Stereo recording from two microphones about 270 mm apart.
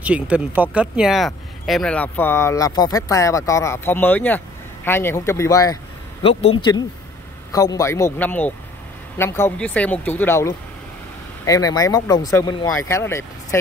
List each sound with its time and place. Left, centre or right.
0.0 s speech: centre